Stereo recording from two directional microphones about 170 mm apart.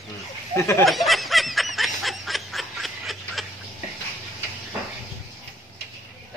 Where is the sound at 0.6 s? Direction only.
15° left (ahead or behind).